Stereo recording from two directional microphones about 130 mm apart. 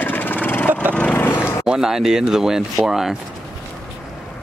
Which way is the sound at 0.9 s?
15° left (ahead or behind).